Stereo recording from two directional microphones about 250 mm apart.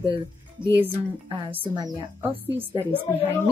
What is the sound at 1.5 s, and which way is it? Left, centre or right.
Speech, centre.